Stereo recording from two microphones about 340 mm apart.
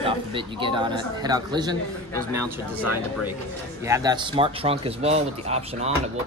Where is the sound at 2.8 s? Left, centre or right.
Left.